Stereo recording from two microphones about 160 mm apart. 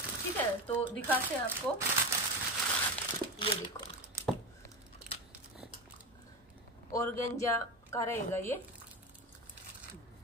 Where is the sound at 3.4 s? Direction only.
35° left (ahead or behind).